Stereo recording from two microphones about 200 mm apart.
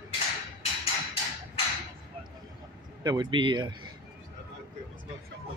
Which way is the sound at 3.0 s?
20° right (ahead or behind).